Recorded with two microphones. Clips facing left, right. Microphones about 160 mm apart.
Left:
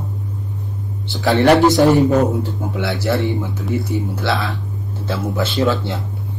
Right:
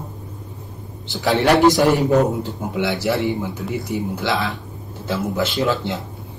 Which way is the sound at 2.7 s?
20° right (ahead or behind).